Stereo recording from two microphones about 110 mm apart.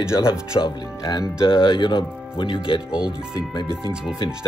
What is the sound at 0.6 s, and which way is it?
Speech, 45° left (ahead or behind).